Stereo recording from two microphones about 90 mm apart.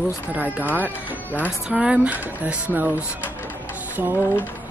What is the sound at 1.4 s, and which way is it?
Speech, 10° right (ahead or behind).